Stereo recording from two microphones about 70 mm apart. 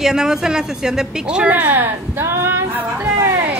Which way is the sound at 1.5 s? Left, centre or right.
Right.